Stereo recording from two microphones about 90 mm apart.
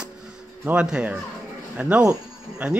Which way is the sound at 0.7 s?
10° right (ahead or behind).